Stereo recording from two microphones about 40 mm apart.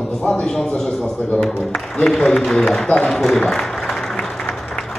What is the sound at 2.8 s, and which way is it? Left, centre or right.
Speech, left.